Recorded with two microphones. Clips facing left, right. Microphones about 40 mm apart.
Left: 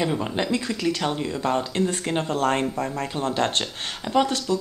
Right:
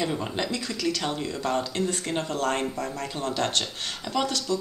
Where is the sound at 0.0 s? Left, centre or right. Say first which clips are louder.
Left 3 dB; centre.